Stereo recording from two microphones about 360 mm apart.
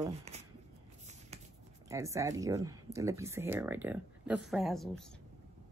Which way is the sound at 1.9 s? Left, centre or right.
Centre.